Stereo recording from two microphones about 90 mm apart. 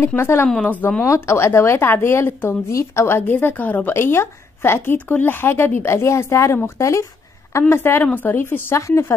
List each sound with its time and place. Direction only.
0.0 s a woman's voice: 30° left (ahead or behind)
0.5 s speech: 15° left (ahead or behind)
1.0 s a woman's voice: 30° left (ahead or behind)